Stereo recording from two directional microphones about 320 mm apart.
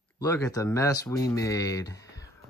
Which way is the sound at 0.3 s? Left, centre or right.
Centre.